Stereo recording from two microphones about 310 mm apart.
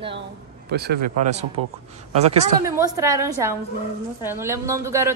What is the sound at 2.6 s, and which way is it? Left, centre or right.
A woman's voice, centre.